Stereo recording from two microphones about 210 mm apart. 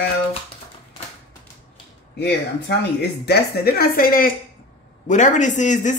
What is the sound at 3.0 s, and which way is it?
A man's voice, 50° left (ahead or behind).